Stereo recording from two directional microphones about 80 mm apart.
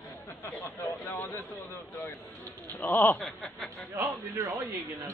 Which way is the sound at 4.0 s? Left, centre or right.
Right.